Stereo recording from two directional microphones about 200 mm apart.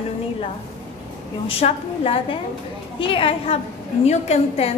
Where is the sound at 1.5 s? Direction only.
30° left (ahead or behind).